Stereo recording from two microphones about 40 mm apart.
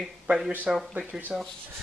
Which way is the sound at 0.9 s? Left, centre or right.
Right.